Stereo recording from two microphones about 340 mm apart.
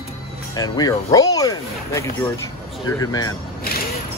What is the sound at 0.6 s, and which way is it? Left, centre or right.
Speech, centre.